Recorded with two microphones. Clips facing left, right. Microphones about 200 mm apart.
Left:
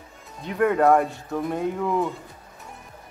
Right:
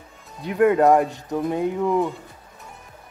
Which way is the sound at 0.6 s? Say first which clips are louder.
Right 3 dB; 10° right (ahead or behind).